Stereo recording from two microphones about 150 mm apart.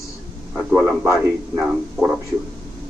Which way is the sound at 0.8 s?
20° right (ahead or behind).